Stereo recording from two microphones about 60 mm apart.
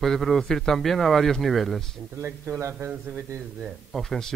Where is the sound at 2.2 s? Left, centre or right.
Right.